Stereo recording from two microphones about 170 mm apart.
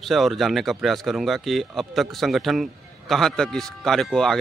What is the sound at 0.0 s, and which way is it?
Speech, centre (ahead or behind).